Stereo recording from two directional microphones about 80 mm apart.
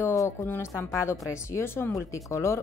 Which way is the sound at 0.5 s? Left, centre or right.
Left.